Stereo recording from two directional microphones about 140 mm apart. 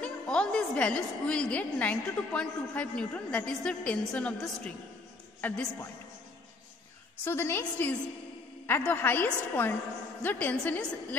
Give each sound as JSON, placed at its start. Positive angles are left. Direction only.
{"t": 0.0, "sound": "a woman's voice", "side_deg": 5}
{"t": 7.2, "sound": "a woman's voice", "side_deg": 15}